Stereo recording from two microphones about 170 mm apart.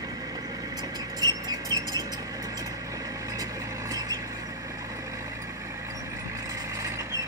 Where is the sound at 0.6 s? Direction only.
20° right (ahead or behind).